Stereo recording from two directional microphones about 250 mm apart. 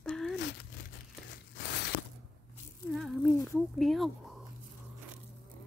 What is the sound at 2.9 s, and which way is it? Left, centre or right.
Speech, centre.